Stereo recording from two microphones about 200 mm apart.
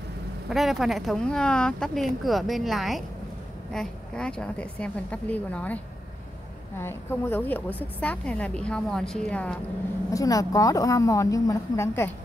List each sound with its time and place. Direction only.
0.5 s speech: centre (ahead or behind)
6.8 s a woman's voice: 10° left (ahead or behind)
10.1 s a woman's voice: 15° left (ahead or behind)